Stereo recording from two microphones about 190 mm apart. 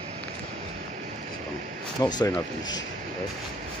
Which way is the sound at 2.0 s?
20° left (ahead or behind).